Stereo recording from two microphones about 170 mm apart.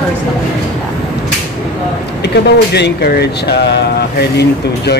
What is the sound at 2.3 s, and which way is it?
Speech, 75° left (ahead or behind).